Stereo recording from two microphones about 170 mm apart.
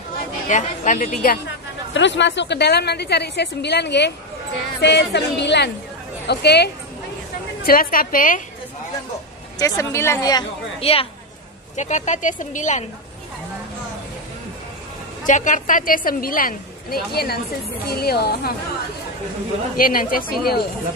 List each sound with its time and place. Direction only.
0.5 s speech: 45° left (ahead or behind)
2.0 s a woman's voice: 90° left
6.2 s a woman's voice: 80° left
7.6 s a woman's voice: 55° left (ahead or behind)
9.6 s a woman's voice: 20° left (ahead or behind)
10.8 s a woman's voice: 35° left (ahead or behind)
11.7 s speech: 45° left (ahead or behind)
15.2 s a woman's voice: 50° left (ahead or behind); by 18.5 s 65° left (ahead or behind)
19.8 s a woman's voice: 55° left (ahead or behind)